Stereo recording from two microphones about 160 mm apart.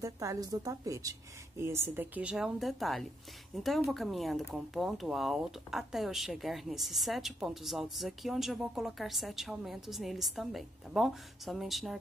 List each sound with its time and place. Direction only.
0.0 s a woman's voice: 20° right (ahead or behind); by 12.0 s centre (ahead or behind)